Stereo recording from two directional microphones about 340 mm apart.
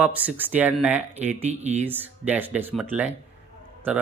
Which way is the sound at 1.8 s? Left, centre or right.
Centre.